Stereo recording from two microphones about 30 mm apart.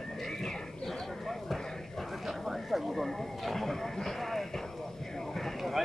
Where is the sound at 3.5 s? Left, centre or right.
Centre.